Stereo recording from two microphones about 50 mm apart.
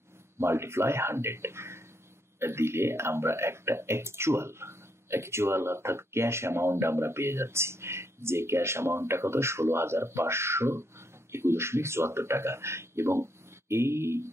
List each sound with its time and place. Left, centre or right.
0.4 s a man's voice: right